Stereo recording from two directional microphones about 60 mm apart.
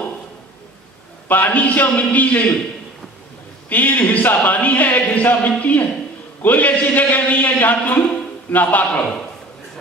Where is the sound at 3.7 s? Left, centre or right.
Left.